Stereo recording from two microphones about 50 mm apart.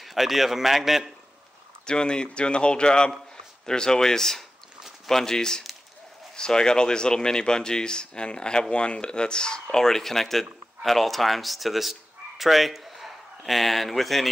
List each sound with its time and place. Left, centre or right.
0.0 s a man's voice: centre
1.9 s speech: centre